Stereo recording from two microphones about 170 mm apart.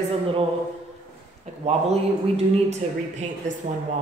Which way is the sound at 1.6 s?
40° right (ahead or behind).